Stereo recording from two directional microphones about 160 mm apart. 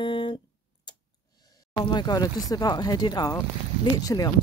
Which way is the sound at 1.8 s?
25° left (ahead or behind).